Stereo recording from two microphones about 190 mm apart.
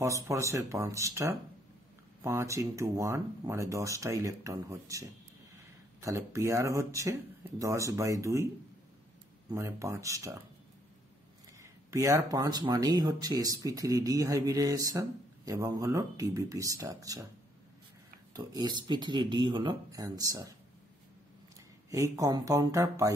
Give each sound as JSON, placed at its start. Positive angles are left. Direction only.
{"t": 0.0, "sound": "speech", "side_deg": -15}
{"t": 9.5, "sound": "speech", "side_deg": -15}
{"t": 11.6, "sound": "speech", "side_deg": -15}
{"t": 18.3, "sound": "speech", "side_deg": -20}
{"t": 21.9, "sound": "speech", "side_deg": -15}